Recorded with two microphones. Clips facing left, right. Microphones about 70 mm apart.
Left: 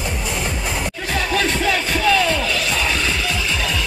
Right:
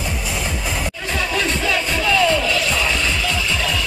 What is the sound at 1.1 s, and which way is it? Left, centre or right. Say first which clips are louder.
Music: left 2 dB; left.